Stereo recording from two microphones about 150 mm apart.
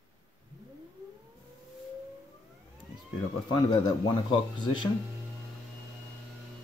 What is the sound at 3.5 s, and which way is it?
Speech, 25° left (ahead or behind).